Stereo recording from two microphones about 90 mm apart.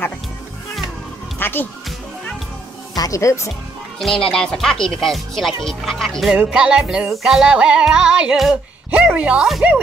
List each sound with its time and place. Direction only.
1.4 s music: 25° left (ahead or behind)
3.0 s speech: 35° left (ahead or behind)
4.0 s speech: 5° left (ahead or behind)
6.3 s music: 10° right (ahead or behind)